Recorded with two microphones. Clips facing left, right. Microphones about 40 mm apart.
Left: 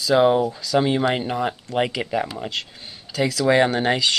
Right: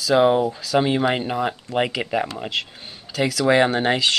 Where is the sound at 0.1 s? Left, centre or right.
Centre.